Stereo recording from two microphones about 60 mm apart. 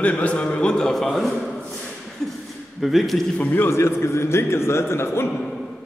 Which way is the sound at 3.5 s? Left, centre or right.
Left.